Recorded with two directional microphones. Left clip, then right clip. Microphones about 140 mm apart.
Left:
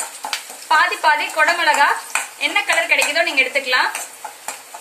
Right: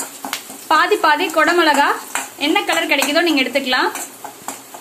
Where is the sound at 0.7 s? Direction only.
75° right (ahead or behind).